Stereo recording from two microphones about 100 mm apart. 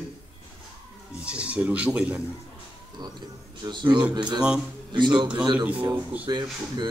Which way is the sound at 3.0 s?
45° right (ahead or behind).